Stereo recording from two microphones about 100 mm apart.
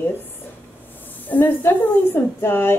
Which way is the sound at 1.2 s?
20° left (ahead or behind).